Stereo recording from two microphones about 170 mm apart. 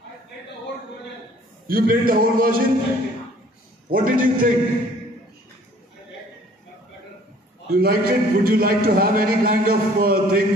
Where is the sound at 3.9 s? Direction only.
55° right (ahead or behind).